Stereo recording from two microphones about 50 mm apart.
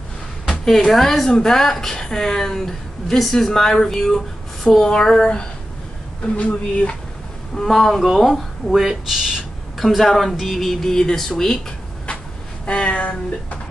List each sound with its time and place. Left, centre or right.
0.7 s a woman's voice: centre; by 7.0 s left
7.5 s speech: centre
8.7 s speech: centre
9.8 s a woman's voice: centre
12.6 s speech: left